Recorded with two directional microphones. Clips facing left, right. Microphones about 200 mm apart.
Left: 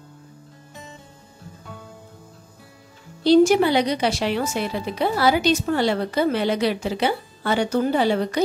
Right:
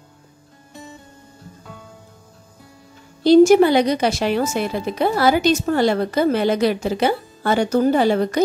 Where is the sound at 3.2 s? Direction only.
45° right (ahead or behind).